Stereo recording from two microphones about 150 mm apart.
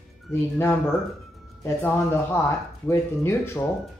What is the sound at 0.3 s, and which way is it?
Speech, 15° left (ahead or behind).